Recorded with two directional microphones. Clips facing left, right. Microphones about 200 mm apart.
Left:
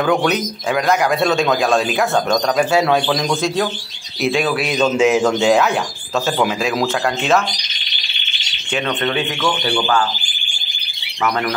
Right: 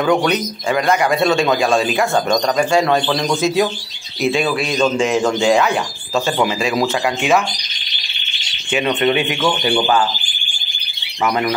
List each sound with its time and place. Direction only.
0.0 s a man's voice: centre (ahead or behind)
8.7 s speech: 15° right (ahead or behind)